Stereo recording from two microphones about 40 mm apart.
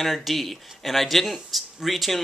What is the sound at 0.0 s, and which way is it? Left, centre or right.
Speech, centre.